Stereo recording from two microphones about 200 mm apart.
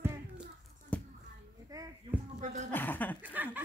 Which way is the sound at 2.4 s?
35° right (ahead or behind).